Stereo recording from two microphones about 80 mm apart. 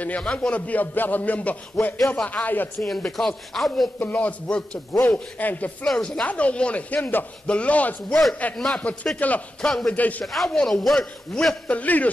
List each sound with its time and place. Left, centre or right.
0.0 s a man's voice: centre
2.0 s a man's voice: centre
2.2 s a man's voice: left
3.1 s a man's voice: centre
4.0 s a man's voice: left
5.9 s a man's voice: centre
8.5 s a man's voice: centre
8.8 s a man's voice: centre
9.9 s a man's voice: centre
10.2 s a man's voice: centre
11.7 s a man's voice: centre